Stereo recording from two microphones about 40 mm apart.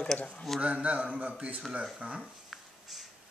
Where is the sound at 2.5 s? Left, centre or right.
Centre.